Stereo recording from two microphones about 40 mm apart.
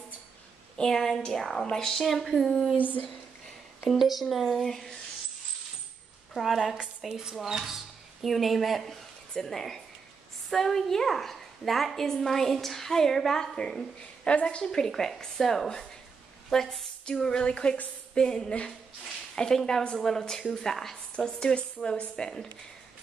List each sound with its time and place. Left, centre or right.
0.7 s a woman's voice: centre
2.8 s speech: left
3.9 s speech: centre
6.3 s a woman's voice: centre
14.2 s a sound: left
14.6 s a woman's voice: centre
17.0 s a sound: left
18.1 s a woman's voice: centre